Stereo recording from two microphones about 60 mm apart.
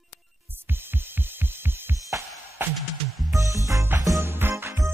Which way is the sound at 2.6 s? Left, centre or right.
Right.